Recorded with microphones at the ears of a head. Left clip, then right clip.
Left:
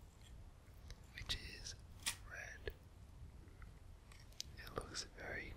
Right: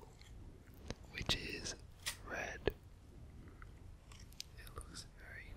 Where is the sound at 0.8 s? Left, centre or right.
Right.